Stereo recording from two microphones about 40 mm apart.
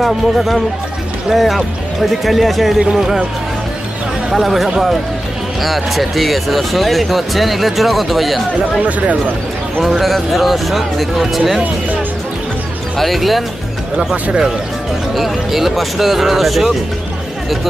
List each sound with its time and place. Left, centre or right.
0.0 s speech: centre
4.3 s speech: centre
5.6 s speech: centre
8.8 s speech: right
9.8 s speech: centre
12.9 s speech: centre
15.1 s speech: centre